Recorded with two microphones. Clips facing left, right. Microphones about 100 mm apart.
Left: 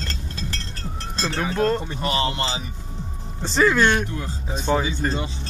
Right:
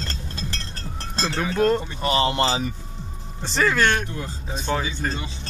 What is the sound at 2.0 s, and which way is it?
Speech, 25° right (ahead or behind).